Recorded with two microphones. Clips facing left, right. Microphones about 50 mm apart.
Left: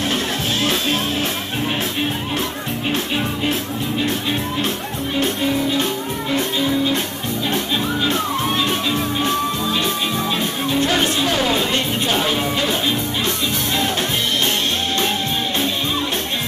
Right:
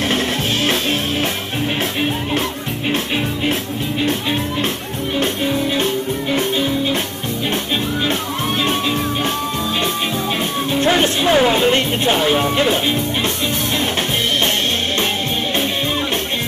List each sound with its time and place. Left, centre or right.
8.1 s music: right
10.9 s speech: right